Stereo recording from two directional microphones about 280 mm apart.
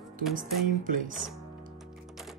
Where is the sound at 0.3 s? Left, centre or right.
Right.